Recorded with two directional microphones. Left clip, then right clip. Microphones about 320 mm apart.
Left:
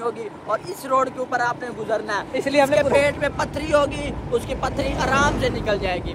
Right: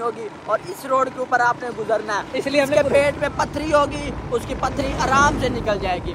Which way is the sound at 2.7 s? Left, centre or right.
Centre.